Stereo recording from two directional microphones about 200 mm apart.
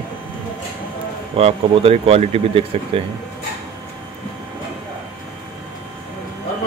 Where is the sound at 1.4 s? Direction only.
30° right (ahead or behind).